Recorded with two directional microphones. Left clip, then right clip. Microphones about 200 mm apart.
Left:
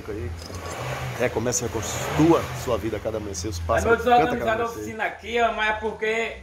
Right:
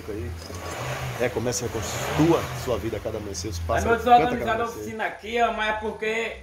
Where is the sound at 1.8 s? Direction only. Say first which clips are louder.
Even; 55° right (ahead or behind).